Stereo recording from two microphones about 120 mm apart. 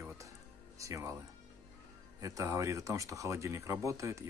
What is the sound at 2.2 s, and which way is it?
Speech, 25° right (ahead or behind).